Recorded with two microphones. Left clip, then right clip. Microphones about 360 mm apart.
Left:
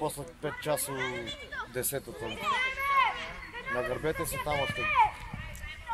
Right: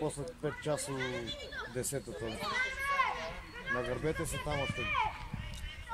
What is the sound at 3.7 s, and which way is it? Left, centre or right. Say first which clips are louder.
Speech: left 4 dB; left.